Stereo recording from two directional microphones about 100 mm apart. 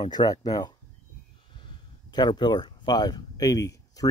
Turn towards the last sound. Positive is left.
turn(degrees=35)  # may be behind; listen again after turning